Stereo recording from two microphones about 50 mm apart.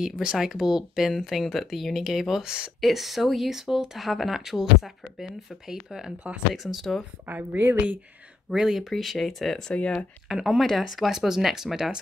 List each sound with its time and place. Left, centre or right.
0.0 s speech: centre
7.2 s a woman's voice: right
8.5 s speech: centre
9.7 s speech: left
9.9 s speech: centre